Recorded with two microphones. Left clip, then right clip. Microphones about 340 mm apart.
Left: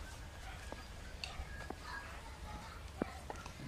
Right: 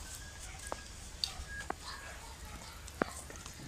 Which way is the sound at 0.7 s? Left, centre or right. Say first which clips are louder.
Right 10 dB; right.